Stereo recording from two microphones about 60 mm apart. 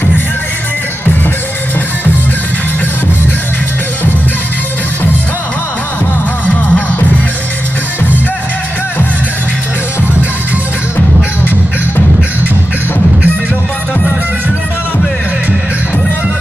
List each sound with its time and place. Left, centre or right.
6.4 s music: left